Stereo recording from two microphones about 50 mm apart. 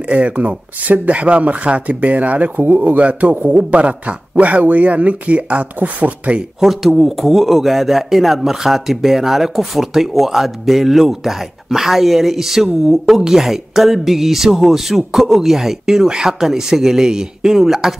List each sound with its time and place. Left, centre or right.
0.1 s speech: right
6.6 s speech: centre